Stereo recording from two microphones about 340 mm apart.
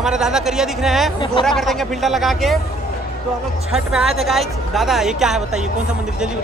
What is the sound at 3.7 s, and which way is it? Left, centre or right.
Speech, centre.